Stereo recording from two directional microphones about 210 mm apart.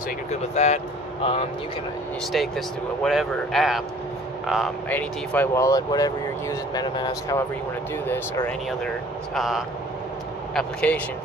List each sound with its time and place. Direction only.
0.6 s speech: 30° left (ahead or behind)
2.3 s speech: centre (ahead or behind)